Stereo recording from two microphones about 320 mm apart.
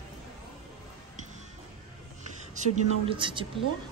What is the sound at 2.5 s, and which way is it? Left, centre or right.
Speech, centre.